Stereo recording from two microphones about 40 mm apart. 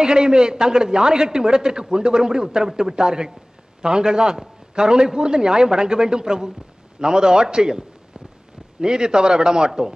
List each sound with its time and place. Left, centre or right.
0.0 s a man's voice: centre
8.8 s a man's voice: centre